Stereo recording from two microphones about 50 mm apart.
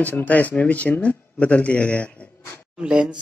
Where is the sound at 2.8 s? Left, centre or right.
Centre.